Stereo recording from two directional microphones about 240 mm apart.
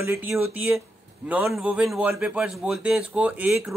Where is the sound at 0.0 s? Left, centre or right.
Centre.